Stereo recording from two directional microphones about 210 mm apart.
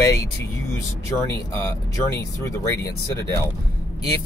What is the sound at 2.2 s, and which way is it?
Speech, 15° left (ahead or behind).